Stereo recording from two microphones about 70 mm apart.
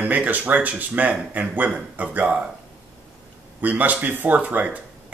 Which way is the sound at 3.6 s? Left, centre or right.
Right.